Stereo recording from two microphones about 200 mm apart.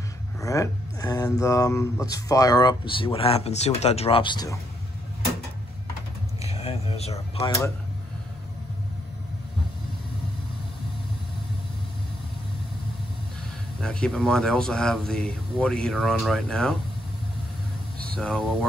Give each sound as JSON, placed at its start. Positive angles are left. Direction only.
{"t": 0.4, "sound": "speech", "side_deg": 15}
{"t": 6.4, "sound": "speech", "side_deg": 30}
{"t": 13.7, "sound": "speech", "side_deg": 5}
{"t": 18.1, "sound": "speech", "side_deg": 5}